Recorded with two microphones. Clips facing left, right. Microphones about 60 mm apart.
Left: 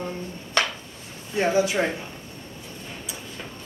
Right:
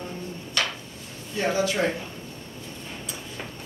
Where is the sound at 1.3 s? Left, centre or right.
Left.